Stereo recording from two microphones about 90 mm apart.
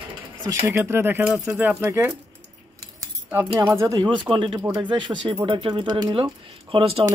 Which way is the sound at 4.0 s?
65° right (ahead or behind).